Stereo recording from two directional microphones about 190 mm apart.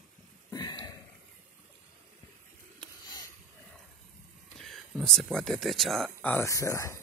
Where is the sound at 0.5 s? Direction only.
20° left (ahead or behind).